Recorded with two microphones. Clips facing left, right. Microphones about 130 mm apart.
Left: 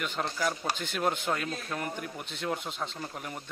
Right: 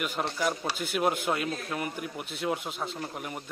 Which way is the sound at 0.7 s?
5° right (ahead or behind).